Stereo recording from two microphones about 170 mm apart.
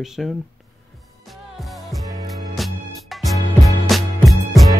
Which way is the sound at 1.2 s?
Centre (ahead or behind).